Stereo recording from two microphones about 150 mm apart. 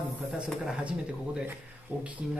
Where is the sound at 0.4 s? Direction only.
5° right (ahead or behind).